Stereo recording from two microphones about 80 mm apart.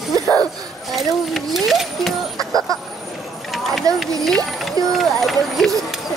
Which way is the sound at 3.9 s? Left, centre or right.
Right.